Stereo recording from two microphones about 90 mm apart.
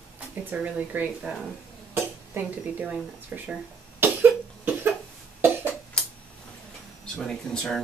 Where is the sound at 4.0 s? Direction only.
25° right (ahead or behind).